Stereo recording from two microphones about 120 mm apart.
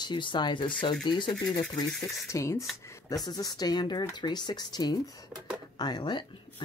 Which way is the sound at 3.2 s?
35° left (ahead or behind).